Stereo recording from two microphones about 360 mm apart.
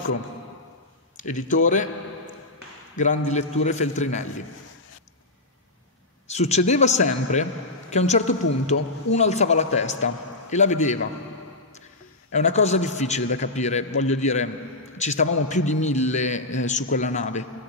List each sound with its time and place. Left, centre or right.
1.2 s a man's voice: left
3.0 s a man's voice: centre
6.2 s a man's voice: centre
12.3 s a man's voice: centre